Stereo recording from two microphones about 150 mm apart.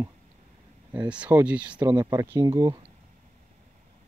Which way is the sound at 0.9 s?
10° right (ahead or behind).